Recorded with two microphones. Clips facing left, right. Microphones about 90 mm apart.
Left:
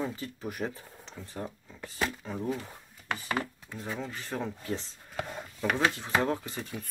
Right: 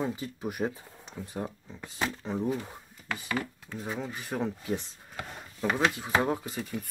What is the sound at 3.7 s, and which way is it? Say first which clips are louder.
Speech: right 1 dB; 15° right (ahead or behind).